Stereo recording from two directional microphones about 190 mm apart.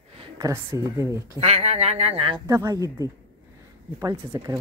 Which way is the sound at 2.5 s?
15° right (ahead or behind).